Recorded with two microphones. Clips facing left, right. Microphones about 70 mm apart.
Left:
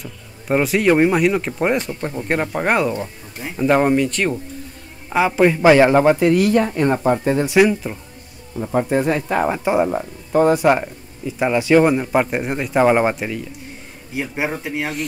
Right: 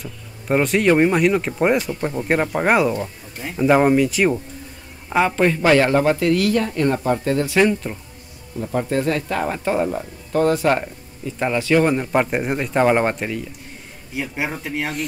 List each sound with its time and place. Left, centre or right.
0.0 s speech: centre
5.1 s a man's voice: centre
7.6 s speech: centre
8.5 s speech: centre
11.9 s speech: centre
14.1 s speech: centre